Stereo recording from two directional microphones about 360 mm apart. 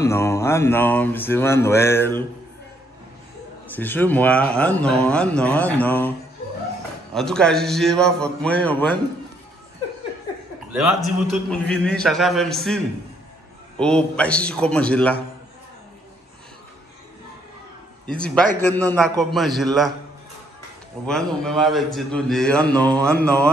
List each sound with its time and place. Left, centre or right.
0.0 s speech: centre
3.7 s a man's voice: centre
7.2 s a man's voice: centre
10.7 s a man's voice: centre
18.0 s a man's voice: centre
21.0 s a man's voice: centre